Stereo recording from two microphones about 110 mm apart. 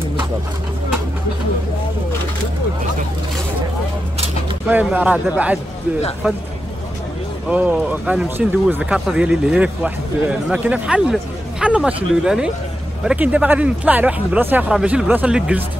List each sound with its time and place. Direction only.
4.6 s speech: 15° right (ahead or behind)
7.4 s speech: 15° right (ahead or behind)